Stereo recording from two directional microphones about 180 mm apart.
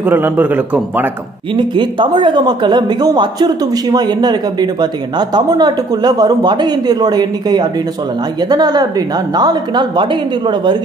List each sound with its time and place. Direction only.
0.0 s a man's voice: 10° right (ahead or behind)
1.5 s speech: 25° right (ahead or behind)